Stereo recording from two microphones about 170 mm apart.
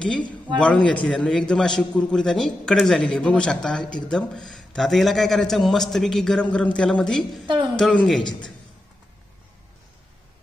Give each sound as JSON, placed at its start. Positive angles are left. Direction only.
{"t": 0.6, "sound": "a man's voice", "side_deg": 5}
{"t": 8.2, "sound": "a man's voice", "side_deg": 25}